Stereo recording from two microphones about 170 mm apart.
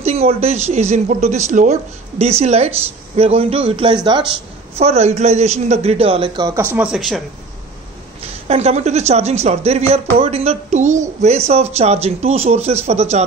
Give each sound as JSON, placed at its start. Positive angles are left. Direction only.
{"t": 0.0, "sound": "speech", "side_deg": -40}
{"t": 4.7, "sound": "speech", "side_deg": -40}
{"t": 6.5, "sound": "speech", "side_deg": -10}
{"t": 8.5, "sound": "speech", "side_deg": -40}